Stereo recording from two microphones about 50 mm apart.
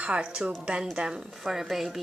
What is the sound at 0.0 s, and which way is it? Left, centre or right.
A woman's voice, right.